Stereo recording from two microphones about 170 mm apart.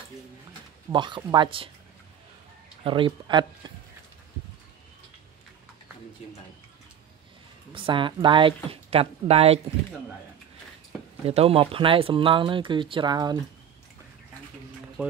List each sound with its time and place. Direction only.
0.9 s speech: 30° right (ahead or behind)
2.8 s speech: 30° right (ahead or behind)
6.2 s a sound: 40° left (ahead or behind)
7.7 s speech: 30° right (ahead or behind)
11.2 s speech: 35° right (ahead or behind)